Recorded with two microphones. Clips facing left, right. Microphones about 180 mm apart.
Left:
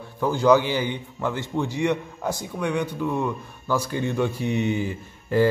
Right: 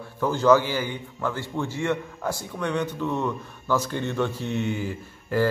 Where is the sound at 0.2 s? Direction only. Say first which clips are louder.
Left 1 dB; 15° left (ahead or behind).